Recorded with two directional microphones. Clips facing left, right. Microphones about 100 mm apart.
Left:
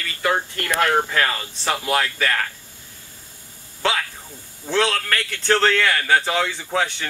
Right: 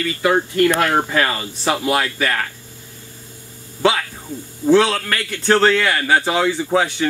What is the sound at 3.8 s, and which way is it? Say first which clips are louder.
A man's voice: right 5 dB; 10° right (ahead or behind).